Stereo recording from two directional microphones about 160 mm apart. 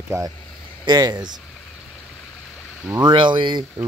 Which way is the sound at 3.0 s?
30° right (ahead or behind).